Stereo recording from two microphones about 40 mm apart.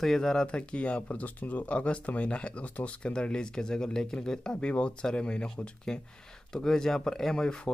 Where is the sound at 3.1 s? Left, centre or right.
Left.